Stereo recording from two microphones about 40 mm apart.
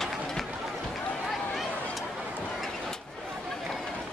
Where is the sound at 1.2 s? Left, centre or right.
Centre.